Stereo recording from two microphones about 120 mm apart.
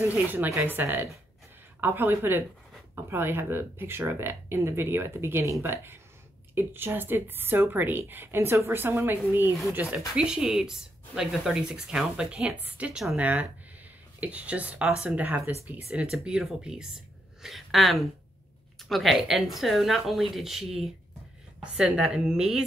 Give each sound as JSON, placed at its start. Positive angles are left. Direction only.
{"t": 0.1, "sound": "a woman's voice", "side_deg": -15}